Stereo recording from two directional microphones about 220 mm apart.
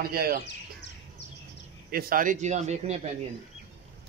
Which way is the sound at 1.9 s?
40° right (ahead or behind).